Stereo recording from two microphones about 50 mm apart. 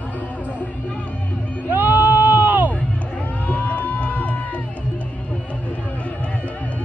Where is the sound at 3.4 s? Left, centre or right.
Left.